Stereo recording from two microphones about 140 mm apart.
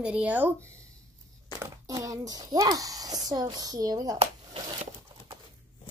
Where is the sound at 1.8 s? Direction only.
25° right (ahead or behind).